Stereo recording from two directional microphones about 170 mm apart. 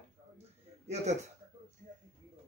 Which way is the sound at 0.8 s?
40° right (ahead or behind).